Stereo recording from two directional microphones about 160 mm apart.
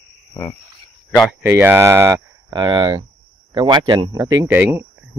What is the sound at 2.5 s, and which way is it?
Speech, 25° right (ahead or behind).